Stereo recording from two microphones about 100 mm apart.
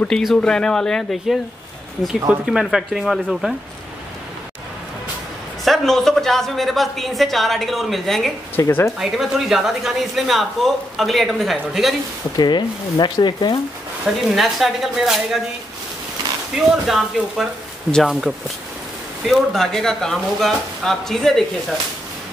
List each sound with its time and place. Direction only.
0.1 s a woman's voice: 5° left (ahead or behind)
2.1 s a woman's voice: 10° right (ahead or behind)
5.7 s a woman's voice: 5° left (ahead or behind)
8.5 s speech: 25° left (ahead or behind)
9.0 s a woman's voice: 5° right (ahead or behind)
12.4 s speech: 45° left (ahead or behind)
14.3 s a woman's voice: centre (ahead or behind)
16.5 s a woman's voice: centre (ahead or behind)